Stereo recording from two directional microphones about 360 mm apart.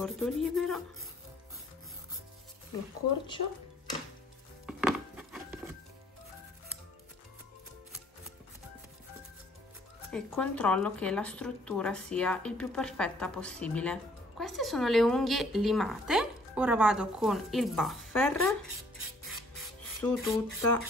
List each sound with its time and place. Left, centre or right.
0.0 s a woman's voice: centre
3.4 s speech: left
4.6 s chopping: centre
10.1 s a woman's voice: centre
20.0 s a woman's voice: centre